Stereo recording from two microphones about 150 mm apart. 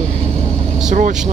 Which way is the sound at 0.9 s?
55° right (ahead or behind).